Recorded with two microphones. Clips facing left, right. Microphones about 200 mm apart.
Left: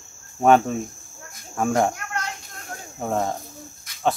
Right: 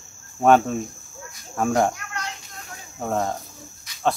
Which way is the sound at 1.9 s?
50° left (ahead or behind).